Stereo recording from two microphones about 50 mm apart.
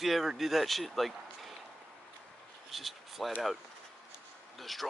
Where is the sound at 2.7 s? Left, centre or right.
Centre.